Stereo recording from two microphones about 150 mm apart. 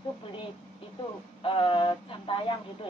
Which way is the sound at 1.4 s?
35° left (ahead or behind).